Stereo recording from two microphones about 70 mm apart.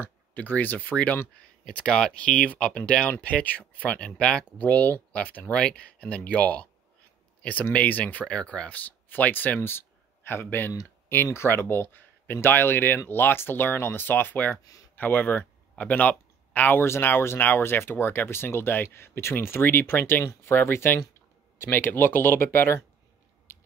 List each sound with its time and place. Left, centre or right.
0.0 s speech: left
7.7 s speech: left
14.6 s speech: left
15.0 s speech: left
16.8 s speech: left